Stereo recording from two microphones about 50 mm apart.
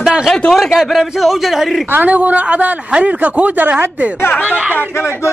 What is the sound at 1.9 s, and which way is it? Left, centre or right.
Speech, right.